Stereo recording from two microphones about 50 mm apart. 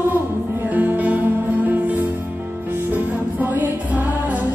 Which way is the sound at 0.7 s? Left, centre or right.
Right.